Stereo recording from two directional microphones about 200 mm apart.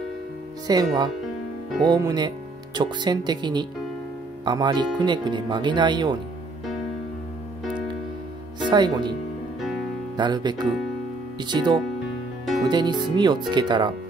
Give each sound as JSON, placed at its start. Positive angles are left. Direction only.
{"t": 0.7, "sound": "speech", "side_deg": -20}
{"t": 8.6, "sound": "speech", "side_deg": -20}
{"t": 10.1, "sound": "speech", "side_deg": -20}